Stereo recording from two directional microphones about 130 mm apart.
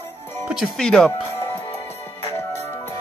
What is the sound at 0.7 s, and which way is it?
Speech, 5° left (ahead or behind).